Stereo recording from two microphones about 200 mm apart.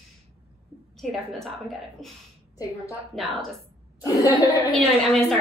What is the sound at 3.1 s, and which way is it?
Speech, centre (ahead or behind).